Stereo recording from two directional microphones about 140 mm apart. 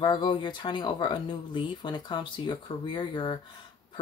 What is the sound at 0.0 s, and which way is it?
Speech, 35° left (ahead or behind).